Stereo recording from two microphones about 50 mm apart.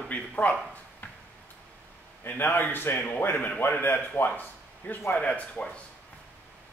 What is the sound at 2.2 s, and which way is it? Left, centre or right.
A man's voice, left.